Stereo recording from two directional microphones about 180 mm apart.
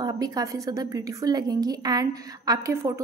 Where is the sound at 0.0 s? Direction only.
20° right (ahead or behind).